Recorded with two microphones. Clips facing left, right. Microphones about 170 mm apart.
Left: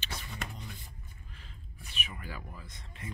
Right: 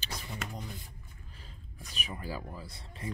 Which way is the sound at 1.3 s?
40° right (ahead or behind).